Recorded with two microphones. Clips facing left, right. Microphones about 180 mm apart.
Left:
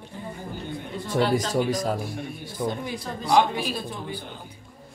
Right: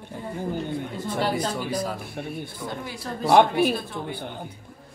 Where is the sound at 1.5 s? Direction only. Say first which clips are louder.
Left 4 dB; 45° left (ahead or behind).